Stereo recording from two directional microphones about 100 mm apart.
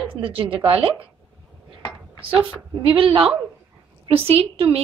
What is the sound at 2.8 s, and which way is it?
Speech, 60° right (ahead or behind).